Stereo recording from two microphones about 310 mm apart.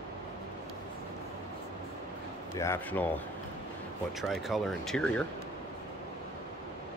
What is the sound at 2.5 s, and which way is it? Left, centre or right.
Speech, centre.